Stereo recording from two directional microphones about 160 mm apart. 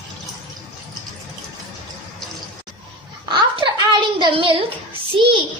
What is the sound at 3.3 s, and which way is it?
A woman's voice, 30° right (ahead or behind).